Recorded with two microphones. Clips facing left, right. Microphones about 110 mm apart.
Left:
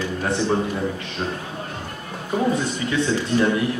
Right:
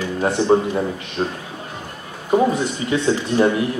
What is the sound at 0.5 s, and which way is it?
Speech, 25° right (ahead or behind).